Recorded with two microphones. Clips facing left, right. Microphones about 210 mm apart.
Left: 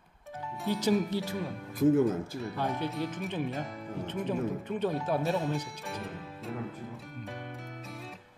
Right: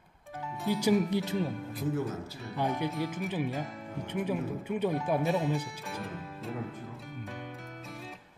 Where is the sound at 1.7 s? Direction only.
50° left (ahead or behind).